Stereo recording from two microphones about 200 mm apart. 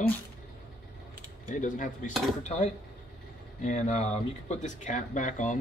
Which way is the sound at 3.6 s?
35° left (ahead or behind).